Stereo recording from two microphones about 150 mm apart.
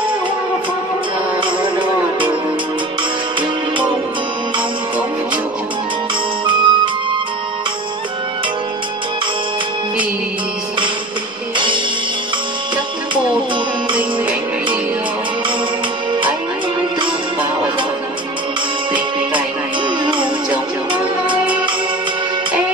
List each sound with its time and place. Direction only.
1.4 s music: 35° right (ahead or behind)
6.4 s music: 35° right (ahead or behind)
11.5 s music: 35° right (ahead or behind)
20.0 s music: 35° right (ahead or behind)